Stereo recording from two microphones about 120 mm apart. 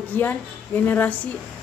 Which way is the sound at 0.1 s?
15° left (ahead or behind).